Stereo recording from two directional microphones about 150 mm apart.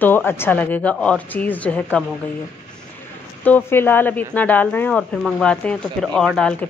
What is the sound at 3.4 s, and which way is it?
A woman's voice, 15° left (ahead or behind).